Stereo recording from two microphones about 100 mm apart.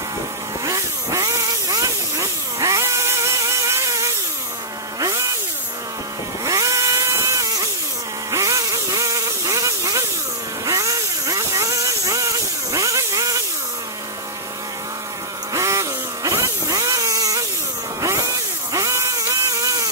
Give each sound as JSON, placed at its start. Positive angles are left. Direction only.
{"t": 0.7, "sound": "vehicle", "side_deg": -30}
{"t": 6.4, "sound": "vehicle", "side_deg": -35}
{"t": 8.3, "sound": "insect", "side_deg": -35}
{"t": 10.6, "sound": "vehicle", "side_deg": -35}
{"t": 15.5, "sound": "a sound", "side_deg": -30}
{"t": 18.7, "sound": "a sound", "side_deg": -30}